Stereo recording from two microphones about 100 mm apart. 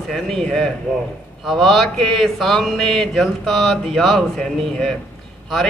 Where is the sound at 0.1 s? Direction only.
5° left (ahead or behind).